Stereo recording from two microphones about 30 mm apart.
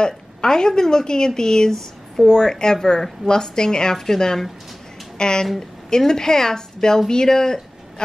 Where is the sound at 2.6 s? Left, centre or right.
Left.